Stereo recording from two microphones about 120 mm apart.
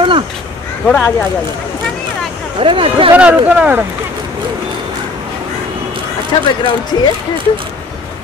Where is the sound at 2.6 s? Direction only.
45° right (ahead or behind).